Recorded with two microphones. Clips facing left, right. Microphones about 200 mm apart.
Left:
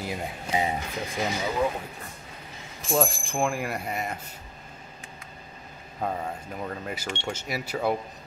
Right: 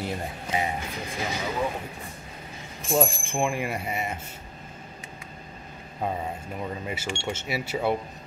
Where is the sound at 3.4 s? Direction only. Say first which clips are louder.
Even; centre (ahead or behind).